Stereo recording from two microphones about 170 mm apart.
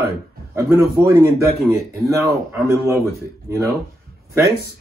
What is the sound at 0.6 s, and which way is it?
Speech, 20° right (ahead or behind).